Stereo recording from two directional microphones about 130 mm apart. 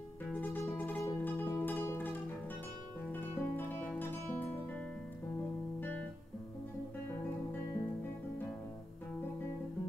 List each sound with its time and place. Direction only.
0.3 s music: 15° left (ahead or behind)